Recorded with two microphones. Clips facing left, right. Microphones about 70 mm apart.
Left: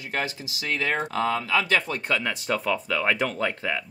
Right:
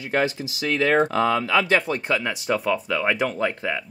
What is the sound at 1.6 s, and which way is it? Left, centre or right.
Speech, right.